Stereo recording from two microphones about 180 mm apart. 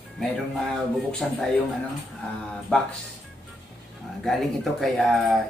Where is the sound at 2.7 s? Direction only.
5° left (ahead or behind).